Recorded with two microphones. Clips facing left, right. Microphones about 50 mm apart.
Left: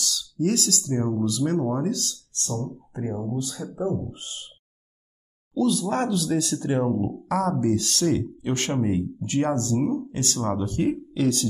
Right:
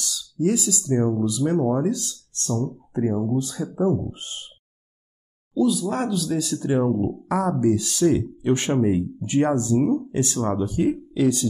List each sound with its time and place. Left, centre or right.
0.4 s speech: centre
2.3 s speech: right
3.0 s speech: centre
3.3 s speech: right
5.5 s speech: centre
6.9 s speech: centre
7.2 s speech: centre